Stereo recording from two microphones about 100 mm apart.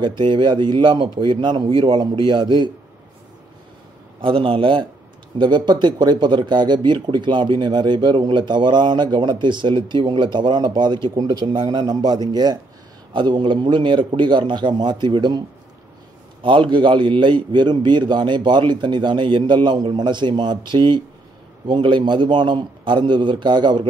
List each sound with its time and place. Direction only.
0.2 s speech: 50° right (ahead or behind)
4.2 s a man's voice: 60° right (ahead or behind)
5.4 s speech: 50° right (ahead or behind)
16.4 s speech: 55° right (ahead or behind)